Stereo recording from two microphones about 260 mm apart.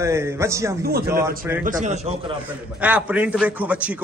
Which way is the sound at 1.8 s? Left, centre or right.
Right.